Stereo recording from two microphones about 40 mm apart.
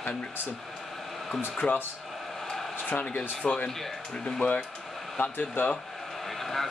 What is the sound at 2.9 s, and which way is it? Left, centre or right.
Speech, left.